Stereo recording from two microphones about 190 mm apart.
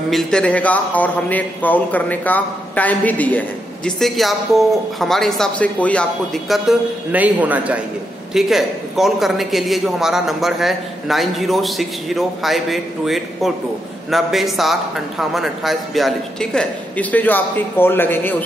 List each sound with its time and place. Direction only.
0.1 s a man's voice: 5° left (ahead or behind)